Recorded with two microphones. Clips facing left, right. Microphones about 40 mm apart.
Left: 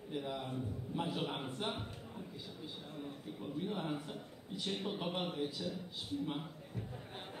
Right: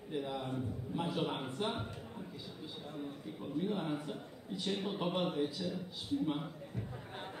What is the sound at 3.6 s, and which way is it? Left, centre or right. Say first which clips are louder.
A man's voice: right 3 dB; centre.